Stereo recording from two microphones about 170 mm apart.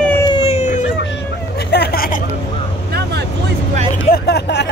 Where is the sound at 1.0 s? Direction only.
80° left; by 2.2 s 60° left (ahead or behind).